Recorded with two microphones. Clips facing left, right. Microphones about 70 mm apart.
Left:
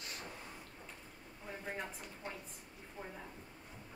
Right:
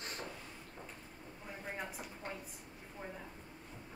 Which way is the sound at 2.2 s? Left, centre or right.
Right.